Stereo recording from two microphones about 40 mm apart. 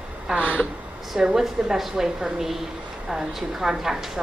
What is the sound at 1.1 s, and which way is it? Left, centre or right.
A woman's voice, centre.